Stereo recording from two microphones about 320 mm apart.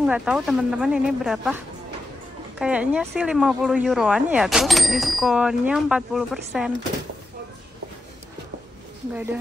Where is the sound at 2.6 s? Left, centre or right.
Centre.